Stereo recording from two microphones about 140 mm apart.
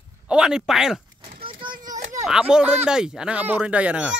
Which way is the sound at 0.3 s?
5° right (ahead or behind).